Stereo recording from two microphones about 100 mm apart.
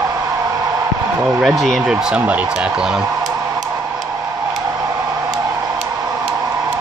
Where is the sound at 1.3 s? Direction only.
5° right (ahead or behind).